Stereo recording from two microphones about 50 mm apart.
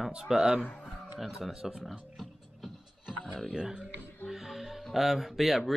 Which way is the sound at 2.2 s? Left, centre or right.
Centre.